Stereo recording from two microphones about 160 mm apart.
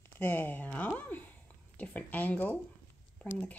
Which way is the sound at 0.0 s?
10° left (ahead or behind).